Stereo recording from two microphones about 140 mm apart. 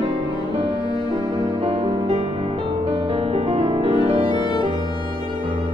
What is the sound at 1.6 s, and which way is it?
Music, 45° right (ahead or behind).